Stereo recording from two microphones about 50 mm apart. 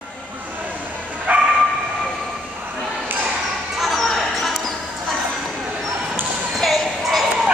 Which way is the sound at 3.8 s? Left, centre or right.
Centre.